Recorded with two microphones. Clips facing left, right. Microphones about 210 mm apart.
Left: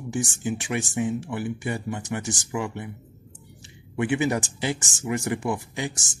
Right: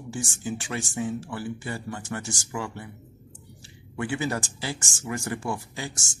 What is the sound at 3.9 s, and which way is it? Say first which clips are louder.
Speech: left 5 dB; 20° left (ahead or behind).